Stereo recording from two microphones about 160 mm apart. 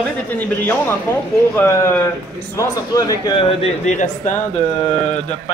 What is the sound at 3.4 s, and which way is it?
Speech, 40° left (ahead or behind).